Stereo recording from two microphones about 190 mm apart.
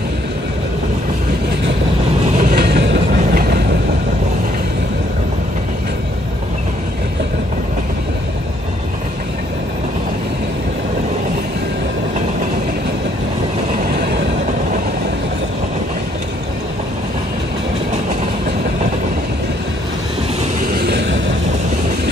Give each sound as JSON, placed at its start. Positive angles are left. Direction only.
{"t": 2.3, "sound": "train", "side_deg": -50}
{"t": 13.8, "sound": "train", "side_deg": -55}
{"t": 20.6, "sound": "vehicle", "side_deg": -55}